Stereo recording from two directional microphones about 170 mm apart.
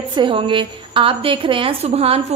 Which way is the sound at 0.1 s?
30° right (ahead or behind).